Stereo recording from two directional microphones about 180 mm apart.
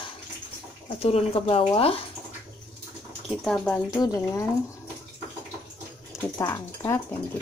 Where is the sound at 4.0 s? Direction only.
15° left (ahead or behind).